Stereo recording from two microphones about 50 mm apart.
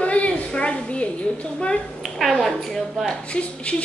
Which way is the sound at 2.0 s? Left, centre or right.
Centre.